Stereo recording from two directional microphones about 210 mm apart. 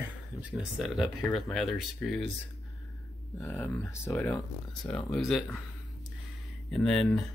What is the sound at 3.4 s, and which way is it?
Speech, 15° left (ahead or behind).